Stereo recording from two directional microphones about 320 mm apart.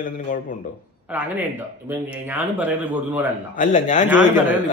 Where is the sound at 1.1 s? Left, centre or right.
Centre.